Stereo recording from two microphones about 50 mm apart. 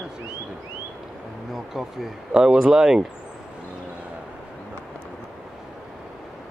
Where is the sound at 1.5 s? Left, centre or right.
Centre.